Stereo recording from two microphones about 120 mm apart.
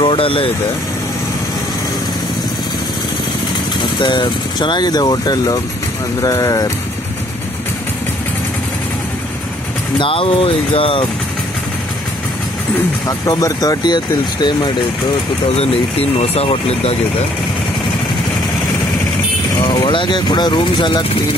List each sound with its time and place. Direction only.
0.0 s speech: 50° left (ahead or behind)
3.8 s speech: 40° left (ahead or behind)
9.9 s speech: 50° left (ahead or behind)
13.2 s speech: 30° left (ahead or behind)
15.5 s speech: 55° left (ahead or behind)
19.6 s speech: 40° left (ahead or behind)